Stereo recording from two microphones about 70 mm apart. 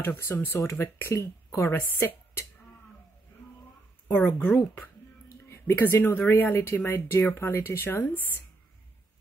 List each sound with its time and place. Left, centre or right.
0.0 s speech: left
4.1 s speech: left